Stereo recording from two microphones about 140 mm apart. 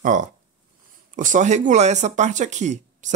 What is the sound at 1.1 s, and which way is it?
Speech, 65° right (ahead or behind).